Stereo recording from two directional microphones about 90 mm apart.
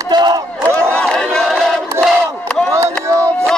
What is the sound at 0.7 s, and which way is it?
Battle cry, 10° left (ahead or behind).